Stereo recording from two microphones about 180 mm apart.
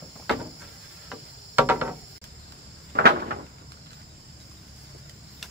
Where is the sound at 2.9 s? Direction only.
60° right (ahead or behind).